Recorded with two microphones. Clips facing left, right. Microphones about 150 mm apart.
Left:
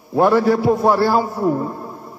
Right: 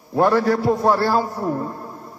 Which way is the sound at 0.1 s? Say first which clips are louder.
Left 3 dB; 10° left (ahead or behind).